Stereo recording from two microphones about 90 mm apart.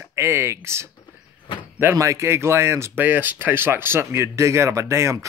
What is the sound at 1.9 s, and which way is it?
Speech, 35° right (ahead or behind).